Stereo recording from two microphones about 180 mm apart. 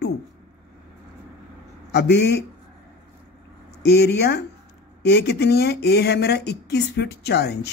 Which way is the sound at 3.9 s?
65° left (ahead or behind).